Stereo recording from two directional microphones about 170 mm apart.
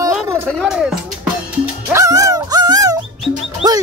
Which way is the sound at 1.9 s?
20° right (ahead or behind).